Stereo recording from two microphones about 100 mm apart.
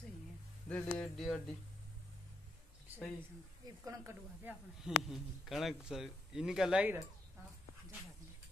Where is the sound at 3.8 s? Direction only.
35° right (ahead or behind).